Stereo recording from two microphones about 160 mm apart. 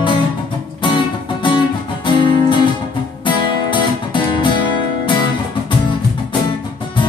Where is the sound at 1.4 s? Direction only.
30° left (ahead or behind).